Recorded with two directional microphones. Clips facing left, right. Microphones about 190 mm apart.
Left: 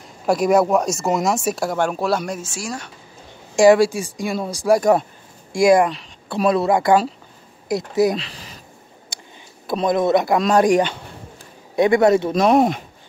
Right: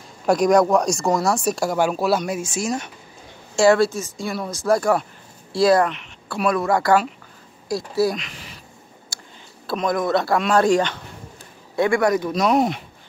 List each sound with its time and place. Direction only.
0.3 s speech: 5° left (ahead or behind)
1.1 s a man's voice: 20° left (ahead or behind)
1.4 s speech: centre (ahead or behind)
2.5 s speech: 20° right (ahead or behind)
3.5 s speech: 15° left (ahead or behind)
6.3 s a man's voice: 30° left (ahead or behind)
8.2 s a sound: 35° left (ahead or behind)
9.1 s a sound: 20° left (ahead or behind)
9.8 s a man's voice: 20° left (ahead or behind)
12.4 s speech: 45° left (ahead or behind)